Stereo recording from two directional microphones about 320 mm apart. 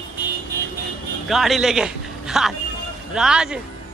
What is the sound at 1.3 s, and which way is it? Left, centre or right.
A man's voice, centre.